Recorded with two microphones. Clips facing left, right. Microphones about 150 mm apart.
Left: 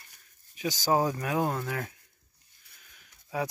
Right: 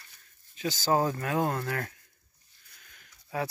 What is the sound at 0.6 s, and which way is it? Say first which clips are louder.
Speech: even; 15° left (ahead or behind).